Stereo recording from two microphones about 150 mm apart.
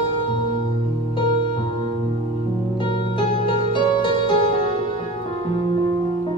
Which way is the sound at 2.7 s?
35° left (ahead or behind).